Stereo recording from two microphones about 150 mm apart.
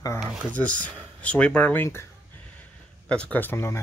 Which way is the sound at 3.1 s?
10° left (ahead or behind).